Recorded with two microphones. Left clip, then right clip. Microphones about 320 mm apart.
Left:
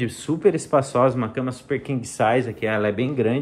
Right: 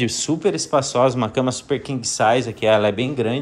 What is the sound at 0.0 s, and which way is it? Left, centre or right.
Speech, centre.